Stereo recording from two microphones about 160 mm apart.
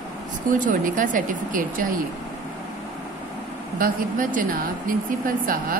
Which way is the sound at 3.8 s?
60° right (ahead or behind).